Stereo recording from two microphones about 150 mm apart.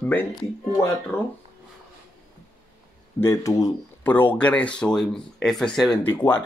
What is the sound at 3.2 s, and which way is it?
Speech, 20° left (ahead or behind).